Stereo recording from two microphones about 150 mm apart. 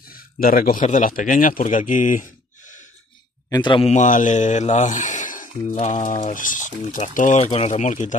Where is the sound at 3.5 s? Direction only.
30° left (ahead or behind).